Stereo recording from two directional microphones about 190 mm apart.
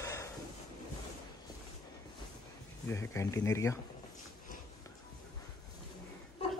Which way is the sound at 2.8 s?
15° left (ahead or behind).